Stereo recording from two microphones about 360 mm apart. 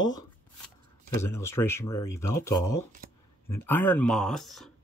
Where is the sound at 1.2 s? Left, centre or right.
Centre.